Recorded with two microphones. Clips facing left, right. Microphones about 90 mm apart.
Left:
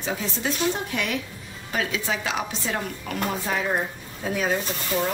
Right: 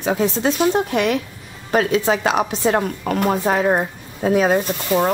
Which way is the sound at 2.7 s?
45° right (ahead or behind).